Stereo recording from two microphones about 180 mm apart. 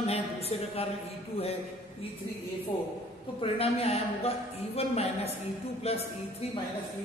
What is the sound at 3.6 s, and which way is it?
A woman's voice, 35° left (ahead or behind).